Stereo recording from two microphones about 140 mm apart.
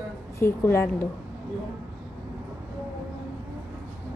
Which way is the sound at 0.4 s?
20° left (ahead or behind).